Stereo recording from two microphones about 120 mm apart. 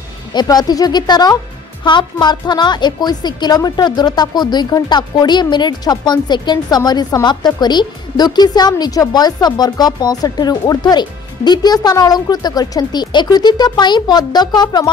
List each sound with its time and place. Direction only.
0.3 s speech: 35° left (ahead or behind)